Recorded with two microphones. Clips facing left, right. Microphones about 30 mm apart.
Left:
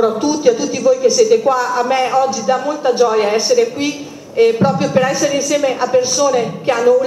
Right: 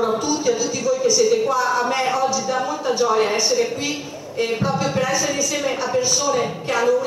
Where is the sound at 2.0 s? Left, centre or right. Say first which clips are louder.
Left 6 dB; centre.